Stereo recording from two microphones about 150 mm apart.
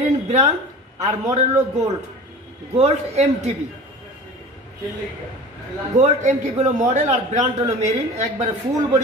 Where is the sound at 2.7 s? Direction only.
45° right (ahead or behind).